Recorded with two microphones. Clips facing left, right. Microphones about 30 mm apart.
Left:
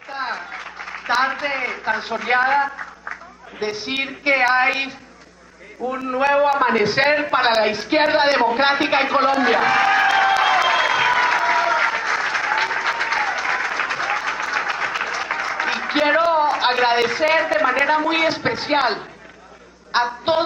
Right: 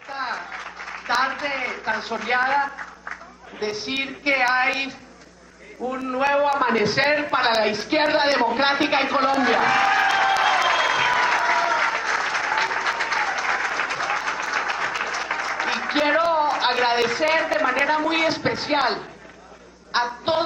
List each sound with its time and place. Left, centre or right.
0.1 s a woman's voice: centre
5.8 s a sound: centre
19.9 s a woman's voice: centre